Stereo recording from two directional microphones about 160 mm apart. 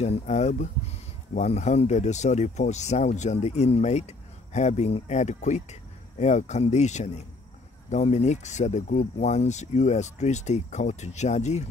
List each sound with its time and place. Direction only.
0.0 s speech: 45° left (ahead or behind)